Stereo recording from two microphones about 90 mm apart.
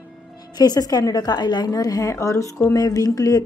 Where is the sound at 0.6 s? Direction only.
45° left (ahead or behind).